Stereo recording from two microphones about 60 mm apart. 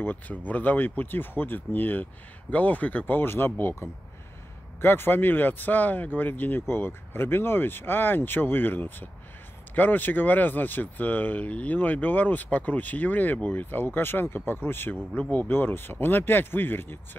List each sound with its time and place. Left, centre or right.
0.0 s speech: left